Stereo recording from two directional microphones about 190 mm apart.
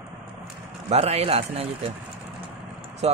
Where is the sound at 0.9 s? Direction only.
35° right (ahead or behind).